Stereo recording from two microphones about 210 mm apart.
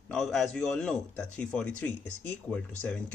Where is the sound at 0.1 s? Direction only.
Centre (ahead or behind).